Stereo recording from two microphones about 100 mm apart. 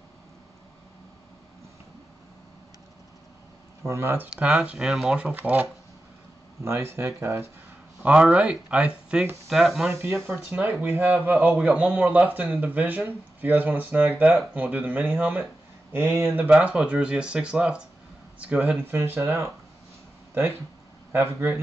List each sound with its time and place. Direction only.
3.8 s speech: 25° right (ahead or behind)
4.3 s speech: 5° right (ahead or behind); by 7.4 s 25° right (ahead or behind)
8.0 s speech: 10° right (ahead or behind)
10.2 s speech: 20° right (ahead or behind)
21.1 s speech: 20° right (ahead or behind)